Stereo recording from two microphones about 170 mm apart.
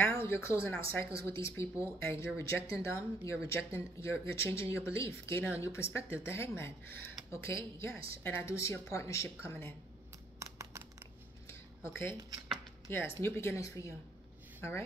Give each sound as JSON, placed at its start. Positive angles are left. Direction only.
{"t": 0.0, "sound": "speech", "side_deg": 15}
{"t": 10.4, "sound": "computer keyboard", "side_deg": -15}
{"t": 11.4, "sound": "a sound", "side_deg": 15}
{"t": 12.9, "sound": "speech", "side_deg": 15}